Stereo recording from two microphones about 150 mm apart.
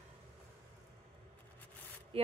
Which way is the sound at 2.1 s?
40° right (ahead or behind).